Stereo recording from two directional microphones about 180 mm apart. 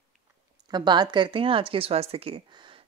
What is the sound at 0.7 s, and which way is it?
A woman's voice, 25° right (ahead or behind).